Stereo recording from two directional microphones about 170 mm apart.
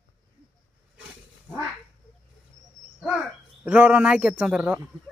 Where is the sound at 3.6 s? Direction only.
10° right (ahead or behind).